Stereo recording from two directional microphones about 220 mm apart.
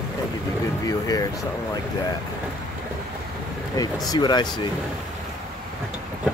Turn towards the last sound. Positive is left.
turn(degrees=20)  # may be behind; listen again after turning